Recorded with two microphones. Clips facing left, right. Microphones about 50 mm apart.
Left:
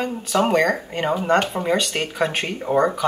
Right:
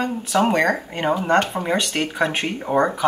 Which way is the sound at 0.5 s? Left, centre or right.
Right.